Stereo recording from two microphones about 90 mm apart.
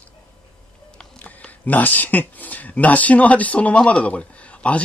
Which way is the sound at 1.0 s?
15° left (ahead or behind).